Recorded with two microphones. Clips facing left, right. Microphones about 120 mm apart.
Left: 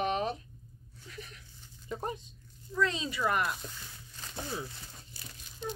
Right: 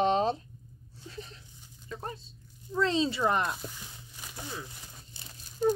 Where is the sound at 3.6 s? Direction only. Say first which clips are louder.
Right 3 dB; 15° right (ahead or behind).